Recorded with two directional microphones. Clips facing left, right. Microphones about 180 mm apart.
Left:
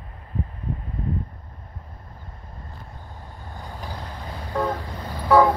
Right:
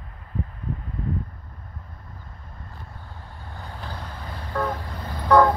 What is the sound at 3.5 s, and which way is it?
Vehicle, 15° left (ahead or behind).